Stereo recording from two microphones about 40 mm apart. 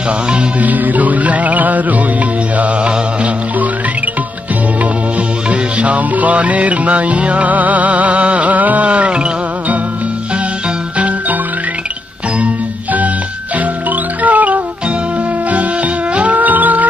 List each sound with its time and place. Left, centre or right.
0.6 s music: right
2.5 s mantra: right
5.5 s music: right
11.0 s music: right
14.2 s music: right
16.2 s music: right